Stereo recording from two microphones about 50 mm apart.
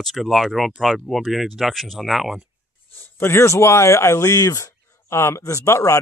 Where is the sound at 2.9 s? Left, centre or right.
Left.